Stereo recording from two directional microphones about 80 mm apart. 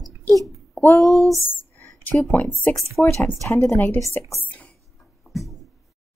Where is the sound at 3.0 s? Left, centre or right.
Centre.